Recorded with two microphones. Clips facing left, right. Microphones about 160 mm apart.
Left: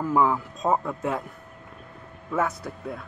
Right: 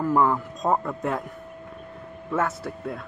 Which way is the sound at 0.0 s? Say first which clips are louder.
Right 1 dB; centre (ahead or behind).